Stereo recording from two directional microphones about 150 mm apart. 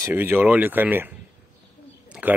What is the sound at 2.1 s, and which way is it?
Bird, 10° right (ahead or behind).